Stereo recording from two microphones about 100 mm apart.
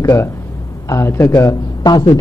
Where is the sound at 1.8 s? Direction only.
45° left (ahead or behind).